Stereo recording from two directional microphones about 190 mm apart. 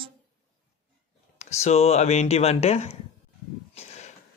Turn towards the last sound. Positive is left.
turn(degrees=35)  # may be behind; listen again after turning